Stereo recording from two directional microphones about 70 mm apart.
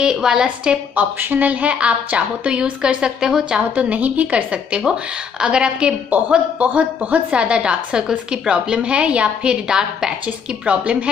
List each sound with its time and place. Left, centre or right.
0.0 s a woman's voice: centre
0.9 s a woman's voice: right